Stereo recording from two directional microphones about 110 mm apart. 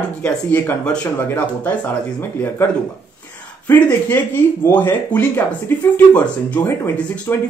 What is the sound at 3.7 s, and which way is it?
Speech, 15° left (ahead or behind).